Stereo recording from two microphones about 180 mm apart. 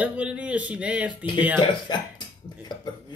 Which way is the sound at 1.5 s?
25° left (ahead or behind).